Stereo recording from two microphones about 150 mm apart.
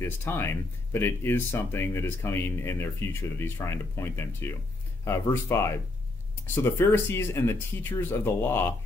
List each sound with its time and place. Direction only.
0.0 s speech: 15° left (ahead or behind)